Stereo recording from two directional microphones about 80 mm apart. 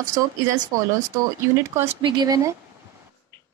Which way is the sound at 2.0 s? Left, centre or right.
Right.